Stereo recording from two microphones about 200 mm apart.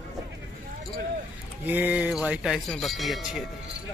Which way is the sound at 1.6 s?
10° right (ahead or behind).